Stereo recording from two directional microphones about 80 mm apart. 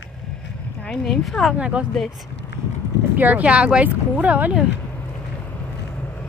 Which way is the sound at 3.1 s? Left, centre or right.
Right.